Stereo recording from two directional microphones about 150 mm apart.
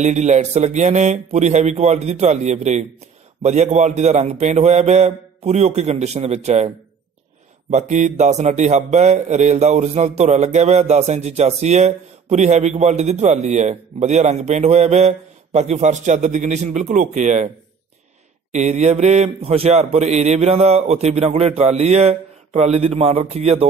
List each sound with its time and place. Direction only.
0.0 s speech: 50° right (ahead or behind)
7.7 s speech: 55° right (ahead or behind)
18.5 s speech: 50° right (ahead or behind)